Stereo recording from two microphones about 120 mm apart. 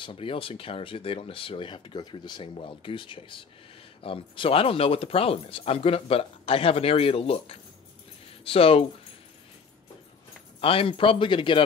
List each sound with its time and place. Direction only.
0.0 s speech: 45° left (ahead or behind)
10.6 s speech: 50° left (ahead or behind)